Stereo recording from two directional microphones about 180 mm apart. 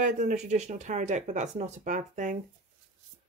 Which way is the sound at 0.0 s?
45° right (ahead or behind).